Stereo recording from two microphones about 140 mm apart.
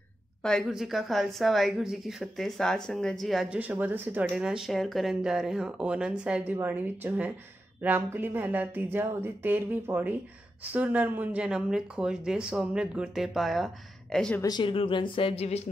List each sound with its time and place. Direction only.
0.4 s speech: 5° left (ahead or behind)
3.5 s speech: 10° right (ahead or behind); by 14.4 s 5° left (ahead or behind)
14.4 s speech: 30° left (ahead or behind)